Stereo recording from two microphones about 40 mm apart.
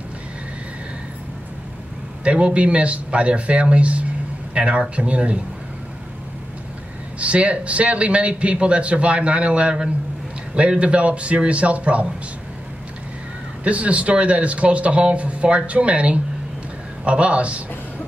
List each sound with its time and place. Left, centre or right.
2.2 s a man's voice: right
7.2 s a man's voice: right
13.7 s a man's voice: right